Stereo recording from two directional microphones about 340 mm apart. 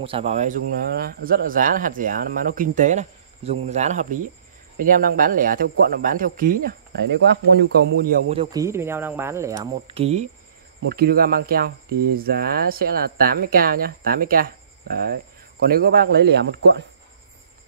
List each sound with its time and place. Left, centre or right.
0.0 s speech: centre